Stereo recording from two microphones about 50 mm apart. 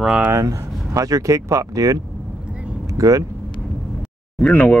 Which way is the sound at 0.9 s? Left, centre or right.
Right.